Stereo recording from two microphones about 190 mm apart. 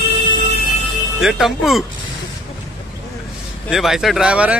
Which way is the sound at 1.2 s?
Centre (ahead or behind).